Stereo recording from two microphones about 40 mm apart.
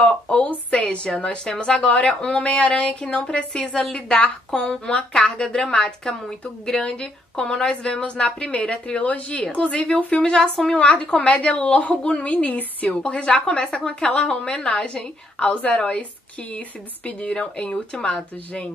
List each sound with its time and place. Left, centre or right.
0.0 s speech: left
0.5 s a woman's voice: left
10.4 s a woman's voice: centre; by 13.2 s left
13.2 s a woman's voice: left
15.3 s a woman's voice: left